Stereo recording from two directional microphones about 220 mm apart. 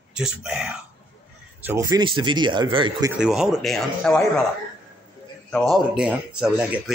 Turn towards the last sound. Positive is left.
turn(degrees=-5)  # may be behind; listen again after turning